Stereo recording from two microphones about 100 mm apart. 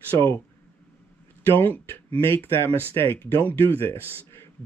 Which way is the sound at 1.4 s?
20° left (ahead or behind).